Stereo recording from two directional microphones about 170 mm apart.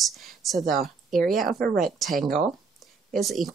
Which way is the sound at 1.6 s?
60° right (ahead or behind).